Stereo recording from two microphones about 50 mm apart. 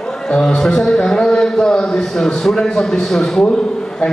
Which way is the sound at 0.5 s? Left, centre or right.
Centre.